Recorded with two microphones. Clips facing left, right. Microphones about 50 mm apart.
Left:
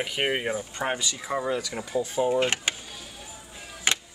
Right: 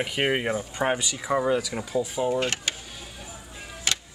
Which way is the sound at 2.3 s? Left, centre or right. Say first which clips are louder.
Left 2 dB; centre.